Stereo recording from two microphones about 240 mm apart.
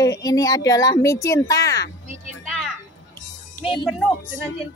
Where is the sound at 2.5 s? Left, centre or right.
Centre.